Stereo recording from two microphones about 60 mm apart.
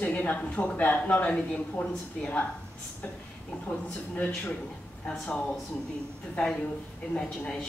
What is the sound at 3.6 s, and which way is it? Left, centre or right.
Speech, left.